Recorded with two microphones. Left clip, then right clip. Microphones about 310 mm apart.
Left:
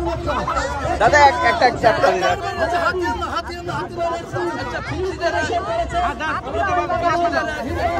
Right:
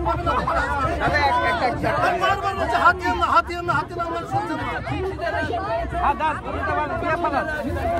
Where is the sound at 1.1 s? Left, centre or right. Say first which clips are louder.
Left 7 dB; centre.